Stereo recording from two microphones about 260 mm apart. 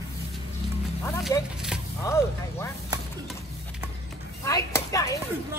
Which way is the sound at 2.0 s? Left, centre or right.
Centre.